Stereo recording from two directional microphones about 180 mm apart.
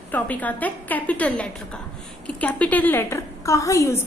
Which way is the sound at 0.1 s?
10° left (ahead or behind).